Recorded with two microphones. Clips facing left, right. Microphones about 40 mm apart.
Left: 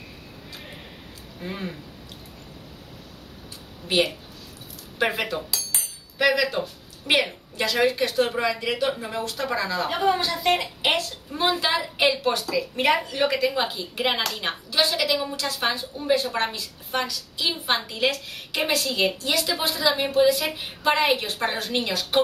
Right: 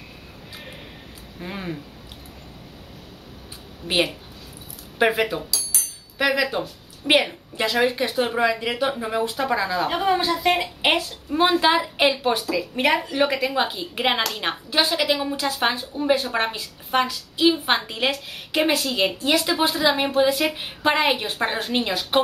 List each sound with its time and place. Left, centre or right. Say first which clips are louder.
1.4 s a woman's voice: right 2 dB; centre
5.0 s a woman's voice: right 4 dB; centre
5.7 s cutlery: right 1 dB; left
6.1 s a woman's voice: even; centre